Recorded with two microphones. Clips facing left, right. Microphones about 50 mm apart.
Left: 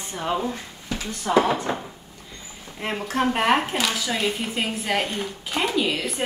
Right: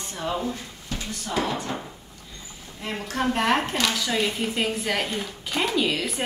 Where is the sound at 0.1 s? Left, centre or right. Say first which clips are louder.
Left 3 dB; left.